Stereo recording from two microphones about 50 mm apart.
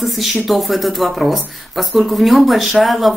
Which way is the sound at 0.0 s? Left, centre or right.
Centre.